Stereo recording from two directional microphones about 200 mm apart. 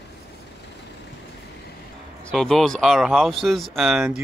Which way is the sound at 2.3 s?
Centre (ahead or behind).